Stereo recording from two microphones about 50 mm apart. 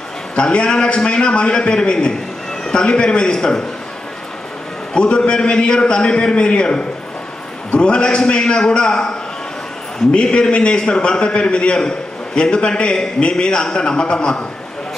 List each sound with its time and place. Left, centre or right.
0.4 s a man's voice: centre
4.9 s a man's voice: centre